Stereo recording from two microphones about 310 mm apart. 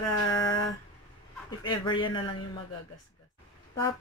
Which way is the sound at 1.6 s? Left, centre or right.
Centre.